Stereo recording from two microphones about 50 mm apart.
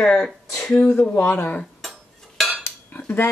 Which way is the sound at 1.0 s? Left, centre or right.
Left.